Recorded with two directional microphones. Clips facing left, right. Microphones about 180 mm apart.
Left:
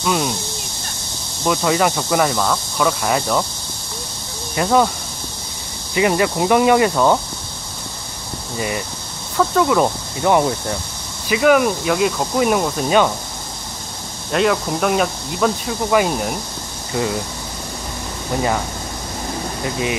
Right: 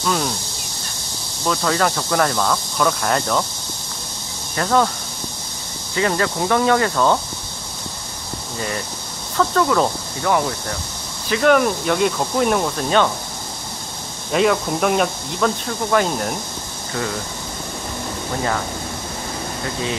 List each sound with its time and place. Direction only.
0.0 s speech: 10° left (ahead or behind)
1.4 s speech: 10° left (ahead or behind)
4.6 s speech: 10° left (ahead or behind)
5.9 s speech: 15° left (ahead or behind)
8.5 s speech: 10° left (ahead or behind)
10.3 s speech: 20° left (ahead or behind)
11.2 s speech: 5° left (ahead or behind)
14.3 s speech: centre (ahead or behind)